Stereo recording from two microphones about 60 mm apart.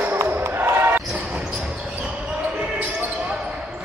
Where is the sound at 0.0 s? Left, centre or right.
Right.